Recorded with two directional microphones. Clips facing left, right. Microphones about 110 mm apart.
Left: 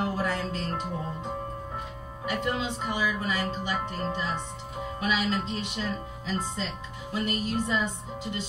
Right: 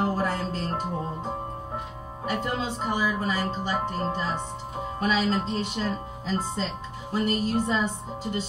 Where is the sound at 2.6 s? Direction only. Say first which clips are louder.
Right 2 dB; 35° right (ahead or behind).